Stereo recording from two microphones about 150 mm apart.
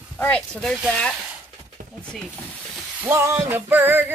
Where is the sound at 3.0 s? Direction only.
15° right (ahead or behind).